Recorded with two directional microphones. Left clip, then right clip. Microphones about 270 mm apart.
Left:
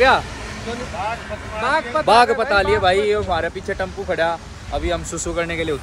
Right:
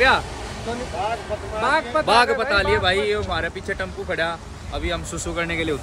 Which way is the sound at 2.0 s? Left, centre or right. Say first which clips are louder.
Left 5 dB; centre.